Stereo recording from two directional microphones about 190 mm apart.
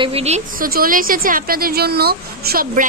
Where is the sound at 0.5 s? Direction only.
50° right (ahead or behind).